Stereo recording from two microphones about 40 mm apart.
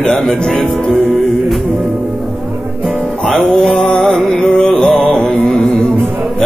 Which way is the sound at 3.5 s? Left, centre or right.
Centre.